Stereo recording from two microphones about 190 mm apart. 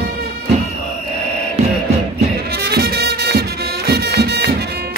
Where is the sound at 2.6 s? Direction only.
55° right (ahead or behind).